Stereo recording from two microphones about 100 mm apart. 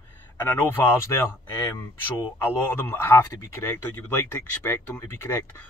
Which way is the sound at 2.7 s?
25° left (ahead or behind).